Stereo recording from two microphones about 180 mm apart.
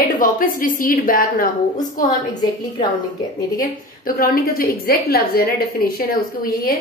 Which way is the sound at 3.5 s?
50° left (ahead or behind).